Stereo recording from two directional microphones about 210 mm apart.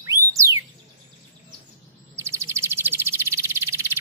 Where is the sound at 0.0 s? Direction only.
15° right (ahead or behind).